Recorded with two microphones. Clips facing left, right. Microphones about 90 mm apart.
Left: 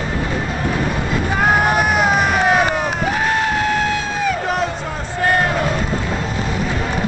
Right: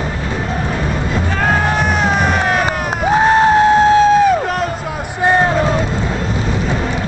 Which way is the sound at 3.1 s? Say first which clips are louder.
Right 12 dB; 30° right (ahead or behind).